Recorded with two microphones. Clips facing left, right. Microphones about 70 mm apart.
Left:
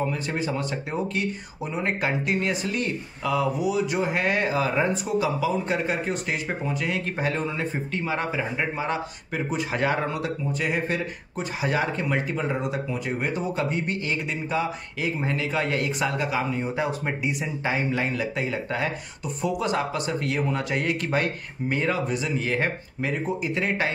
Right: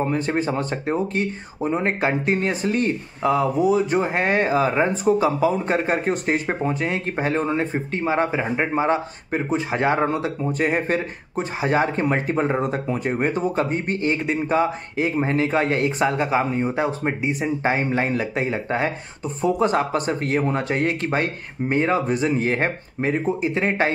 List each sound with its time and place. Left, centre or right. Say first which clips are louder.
0.0 s speech: right 5 dB; right